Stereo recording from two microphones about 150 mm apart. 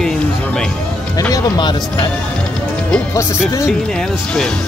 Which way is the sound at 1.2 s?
25° left (ahead or behind).